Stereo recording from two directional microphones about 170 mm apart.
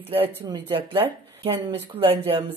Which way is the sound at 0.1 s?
35° right (ahead or behind).